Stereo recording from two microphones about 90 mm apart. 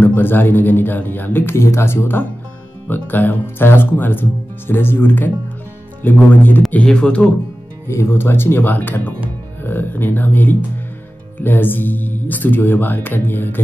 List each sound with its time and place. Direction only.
0.0 s speech: 25° left (ahead or behind)
7.9 s speech: 30° left (ahead or behind)